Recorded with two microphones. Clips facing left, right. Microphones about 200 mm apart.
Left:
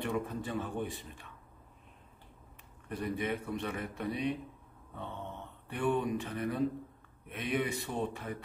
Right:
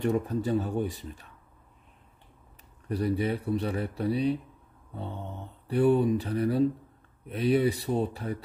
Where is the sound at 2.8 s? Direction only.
35° right (ahead or behind).